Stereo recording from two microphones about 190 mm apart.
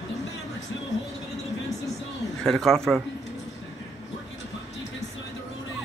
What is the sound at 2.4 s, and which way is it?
Speech, centre (ahead or behind).